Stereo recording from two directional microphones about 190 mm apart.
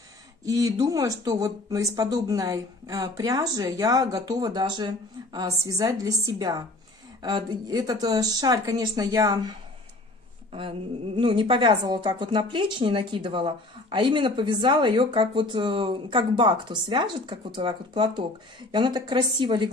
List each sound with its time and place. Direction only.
0.5 s a woman's voice: 15° right (ahead or behind)
11.1 s a woman's voice: 25° right (ahead or behind)